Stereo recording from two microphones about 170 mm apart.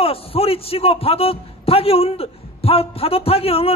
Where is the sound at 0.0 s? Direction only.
35° left (ahead or behind).